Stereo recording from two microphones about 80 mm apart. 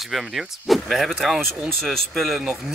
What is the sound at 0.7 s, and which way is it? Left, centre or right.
Speech, centre.